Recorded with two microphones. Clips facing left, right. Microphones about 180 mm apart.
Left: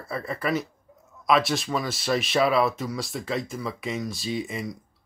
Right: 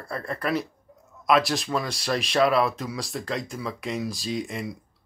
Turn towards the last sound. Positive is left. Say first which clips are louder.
# even
turn(degrees=0)  # may be behind; listen again after turning